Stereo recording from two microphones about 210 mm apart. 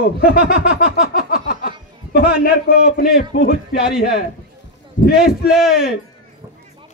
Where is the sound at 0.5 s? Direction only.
50° left (ahead or behind).